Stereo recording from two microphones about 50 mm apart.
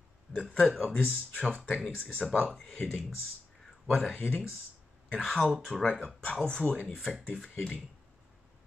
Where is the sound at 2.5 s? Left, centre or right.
Centre.